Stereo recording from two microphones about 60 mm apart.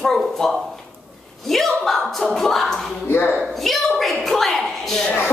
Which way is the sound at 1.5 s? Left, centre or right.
Centre.